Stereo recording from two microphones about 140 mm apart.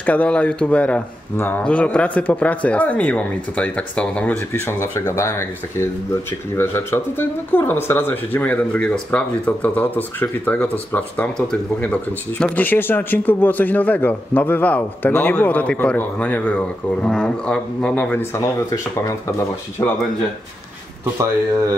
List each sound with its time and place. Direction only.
0.0 s speech: 10° left (ahead or behind)
18.4 s speech: 25° left (ahead or behind)
21.0 s speech: 20° right (ahead or behind)